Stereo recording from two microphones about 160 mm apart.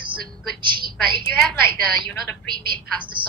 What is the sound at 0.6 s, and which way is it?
Speech, 30° right (ahead or behind).